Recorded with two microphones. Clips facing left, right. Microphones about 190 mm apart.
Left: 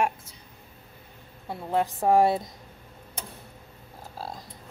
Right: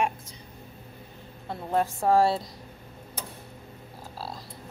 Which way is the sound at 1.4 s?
15° left (ahead or behind).